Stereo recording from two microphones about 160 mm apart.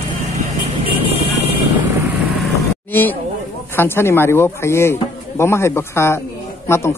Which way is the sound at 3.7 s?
15° left (ahead or behind).